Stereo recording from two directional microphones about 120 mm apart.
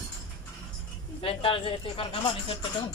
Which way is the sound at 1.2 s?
50° left (ahead or behind).